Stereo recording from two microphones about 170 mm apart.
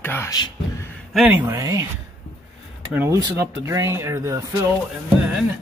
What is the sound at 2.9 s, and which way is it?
Speech, 10° right (ahead or behind).